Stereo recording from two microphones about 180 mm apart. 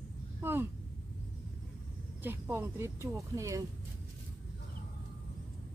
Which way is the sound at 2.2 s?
10° right (ahead or behind).